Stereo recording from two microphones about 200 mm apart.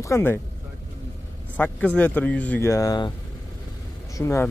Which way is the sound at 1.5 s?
10° left (ahead or behind).